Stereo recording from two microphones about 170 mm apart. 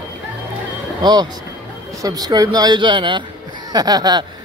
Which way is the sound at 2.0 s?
20° right (ahead or behind).